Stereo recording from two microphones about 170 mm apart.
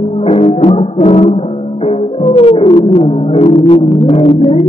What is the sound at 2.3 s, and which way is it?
Music, 35° left (ahead or behind).